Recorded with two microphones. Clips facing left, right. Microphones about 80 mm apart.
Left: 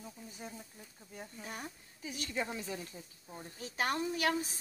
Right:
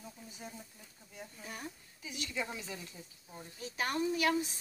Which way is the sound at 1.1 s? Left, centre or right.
Left.